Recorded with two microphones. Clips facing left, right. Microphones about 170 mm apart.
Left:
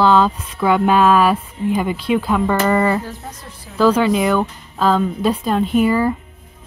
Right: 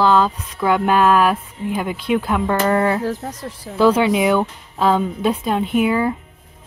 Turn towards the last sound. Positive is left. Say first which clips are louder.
# left 2 dB
turn(degrees=0)  # may be behind; listen again after turning